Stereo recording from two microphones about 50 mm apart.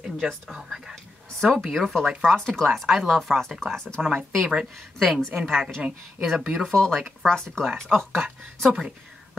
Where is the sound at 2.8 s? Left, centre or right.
Centre.